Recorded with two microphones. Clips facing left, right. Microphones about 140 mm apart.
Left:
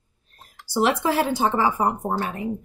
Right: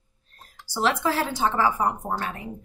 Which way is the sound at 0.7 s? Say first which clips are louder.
Left 3 dB; 15° left (ahead or behind).